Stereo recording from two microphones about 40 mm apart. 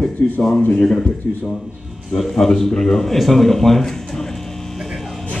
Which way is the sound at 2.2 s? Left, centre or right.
Centre.